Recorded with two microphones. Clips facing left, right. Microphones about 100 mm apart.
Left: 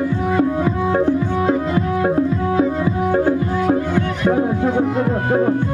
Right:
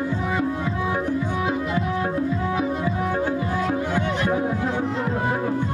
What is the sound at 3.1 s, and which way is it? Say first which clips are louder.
Music: left 7 dB; 50° left (ahead or behind).